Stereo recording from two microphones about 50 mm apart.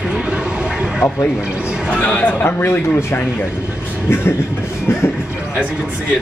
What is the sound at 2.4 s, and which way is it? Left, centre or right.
Speech, left.